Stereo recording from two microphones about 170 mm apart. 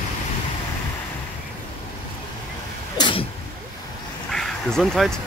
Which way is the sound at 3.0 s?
30° left (ahead or behind).